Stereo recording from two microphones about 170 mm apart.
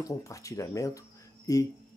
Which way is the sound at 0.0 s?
20° left (ahead or behind).